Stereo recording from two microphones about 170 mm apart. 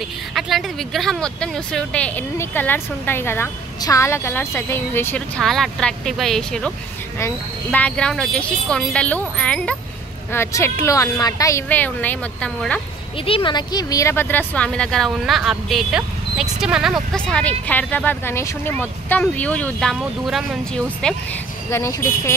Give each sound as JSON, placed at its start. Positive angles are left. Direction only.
{"t": 0.3, "sound": "speech", "side_deg": 0}
{"t": 5.4, "sound": "speech", "side_deg": 0}
{"t": 13.2, "sound": "speech", "side_deg": 30}